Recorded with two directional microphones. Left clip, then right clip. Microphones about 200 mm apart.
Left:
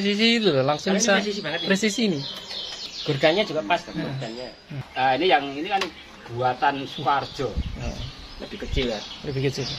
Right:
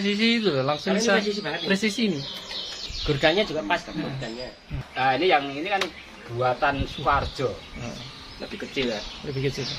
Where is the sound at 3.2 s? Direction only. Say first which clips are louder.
Left 2 dB; 15° left (ahead or behind).